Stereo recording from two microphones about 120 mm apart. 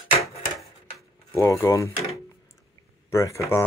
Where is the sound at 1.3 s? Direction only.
25° left (ahead or behind).